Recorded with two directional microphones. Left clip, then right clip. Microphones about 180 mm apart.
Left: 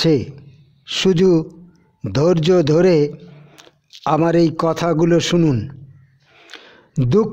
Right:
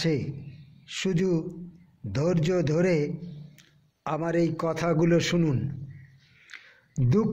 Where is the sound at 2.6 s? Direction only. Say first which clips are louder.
Left 11 dB; 60° left (ahead or behind).